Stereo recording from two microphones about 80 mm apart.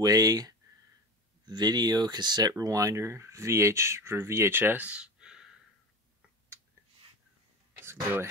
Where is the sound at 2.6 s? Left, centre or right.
Right; by 5.4 s centre.